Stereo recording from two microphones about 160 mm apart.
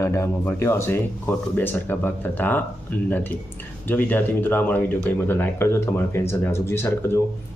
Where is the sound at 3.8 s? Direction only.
10° left (ahead or behind).